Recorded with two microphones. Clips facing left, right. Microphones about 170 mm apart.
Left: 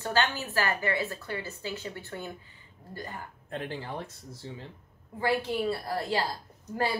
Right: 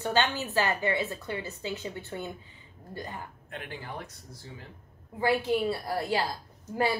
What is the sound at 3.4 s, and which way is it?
Speech, 35° left (ahead or behind).